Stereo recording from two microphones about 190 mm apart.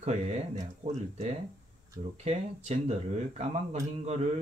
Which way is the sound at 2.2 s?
35° right (ahead or behind).